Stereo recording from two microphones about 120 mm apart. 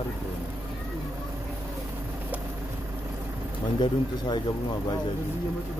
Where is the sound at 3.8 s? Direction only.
35° left (ahead or behind).